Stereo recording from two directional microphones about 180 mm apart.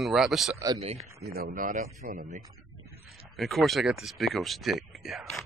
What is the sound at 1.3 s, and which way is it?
Speech, 55° right (ahead or behind).